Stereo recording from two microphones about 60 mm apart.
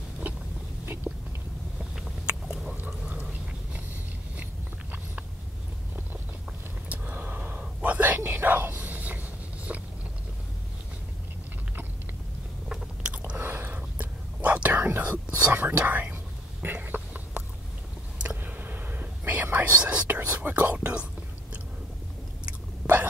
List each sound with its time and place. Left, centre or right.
0.3 s vehicle: right
1.1 s chewing: right
2.2 s a sound: centre
6.9 s whispering: right
8.2 s a sound: right
9.7 s biting: right
13.4 s whispering: right
16.6 s a sound: right
18.4 s whispering: right
22.5 s chewing: right